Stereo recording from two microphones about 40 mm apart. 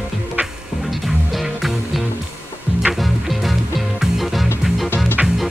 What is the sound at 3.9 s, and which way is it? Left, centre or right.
Music, centre.